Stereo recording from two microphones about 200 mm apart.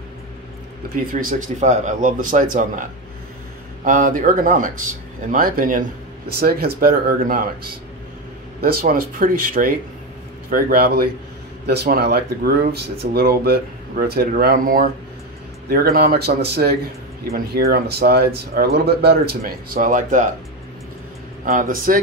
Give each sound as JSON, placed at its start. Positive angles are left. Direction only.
{"t": 1.2, "sound": "speech", "side_deg": -35}
{"t": 3.8, "sound": "speech", "side_deg": -40}
{"t": 21.5, "sound": "speech", "side_deg": -45}